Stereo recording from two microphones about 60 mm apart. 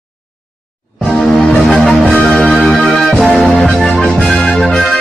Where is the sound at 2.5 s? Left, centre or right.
Centre.